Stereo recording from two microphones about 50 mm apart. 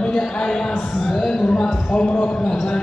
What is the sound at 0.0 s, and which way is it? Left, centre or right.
Speech, centre.